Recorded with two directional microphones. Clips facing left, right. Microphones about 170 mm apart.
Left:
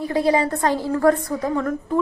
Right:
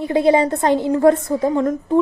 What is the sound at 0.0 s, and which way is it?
A woman's voice, 25° right (ahead or behind).